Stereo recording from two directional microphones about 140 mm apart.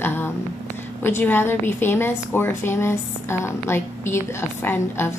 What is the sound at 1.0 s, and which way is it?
A woman's voice, 15° left (ahead or behind).